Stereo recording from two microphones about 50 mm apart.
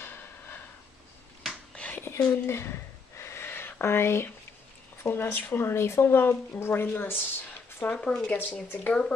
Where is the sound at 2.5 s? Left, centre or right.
Left.